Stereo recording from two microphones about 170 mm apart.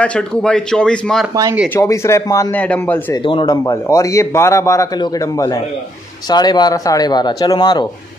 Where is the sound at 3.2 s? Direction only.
30° left (ahead or behind).